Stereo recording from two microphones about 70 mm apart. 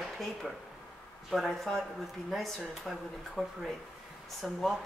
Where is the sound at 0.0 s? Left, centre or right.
Centre.